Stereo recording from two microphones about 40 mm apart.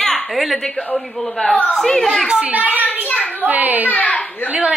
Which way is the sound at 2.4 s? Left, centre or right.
Right.